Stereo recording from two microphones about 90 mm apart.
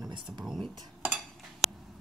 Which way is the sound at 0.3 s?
5° right (ahead or behind).